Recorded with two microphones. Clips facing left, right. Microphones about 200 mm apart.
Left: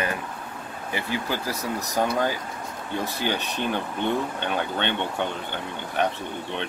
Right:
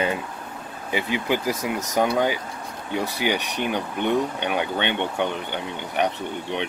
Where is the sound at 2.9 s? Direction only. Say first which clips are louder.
Right 3 dB; 15° right (ahead or behind).